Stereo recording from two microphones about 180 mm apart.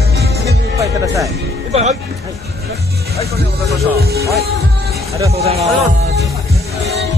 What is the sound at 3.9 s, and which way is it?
Speech, 60° right (ahead or behind).